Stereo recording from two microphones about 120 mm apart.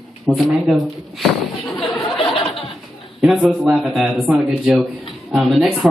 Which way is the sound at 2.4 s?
50° left (ahead or behind).